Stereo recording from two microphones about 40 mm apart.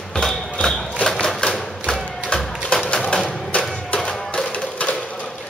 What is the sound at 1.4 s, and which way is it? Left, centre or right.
Music, centre.